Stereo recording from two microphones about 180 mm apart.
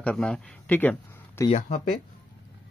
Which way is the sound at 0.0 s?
Centre (ahead or behind).